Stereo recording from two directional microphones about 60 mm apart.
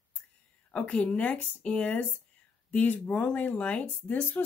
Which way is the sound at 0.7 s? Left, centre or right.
Left.